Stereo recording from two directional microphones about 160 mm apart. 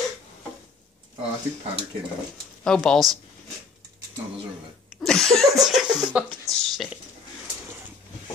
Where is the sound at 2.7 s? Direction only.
5° left (ahead or behind).